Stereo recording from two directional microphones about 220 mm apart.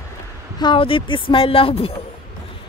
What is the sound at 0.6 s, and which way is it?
A woman's voice, 20° left (ahead or behind).